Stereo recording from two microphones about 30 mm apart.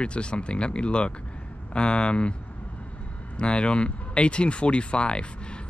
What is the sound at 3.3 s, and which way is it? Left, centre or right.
Speech, left.